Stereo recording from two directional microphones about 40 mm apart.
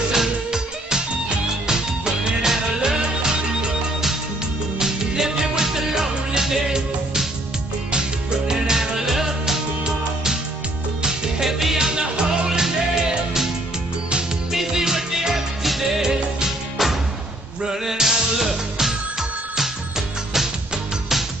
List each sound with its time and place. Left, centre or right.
0.1 s music: centre
4.7 s music: centre
11.9 s music: right
14.5 s music: centre